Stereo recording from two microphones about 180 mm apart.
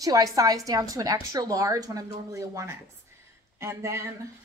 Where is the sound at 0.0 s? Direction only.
20° right (ahead or behind).